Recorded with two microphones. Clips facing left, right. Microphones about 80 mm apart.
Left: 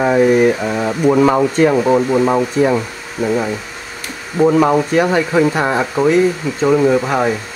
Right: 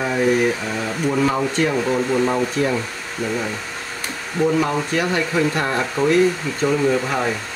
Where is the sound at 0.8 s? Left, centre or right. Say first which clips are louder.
Left 8 dB; left.